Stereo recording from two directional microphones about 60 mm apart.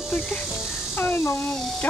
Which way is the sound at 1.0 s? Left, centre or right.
Left.